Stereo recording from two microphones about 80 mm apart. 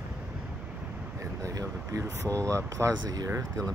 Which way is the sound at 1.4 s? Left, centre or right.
Right.